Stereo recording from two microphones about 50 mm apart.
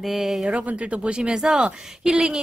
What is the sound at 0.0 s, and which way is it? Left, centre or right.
Speech, centre.